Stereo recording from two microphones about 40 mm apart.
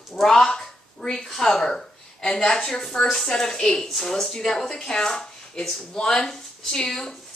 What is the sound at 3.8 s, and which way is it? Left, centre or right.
Speech, centre.